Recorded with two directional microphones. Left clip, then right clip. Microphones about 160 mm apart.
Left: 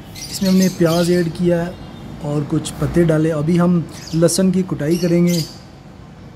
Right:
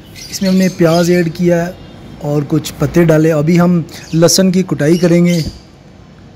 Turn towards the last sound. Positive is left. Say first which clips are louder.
# right 6 dB
turn(degrees=-35)  # may be behind; listen again after turning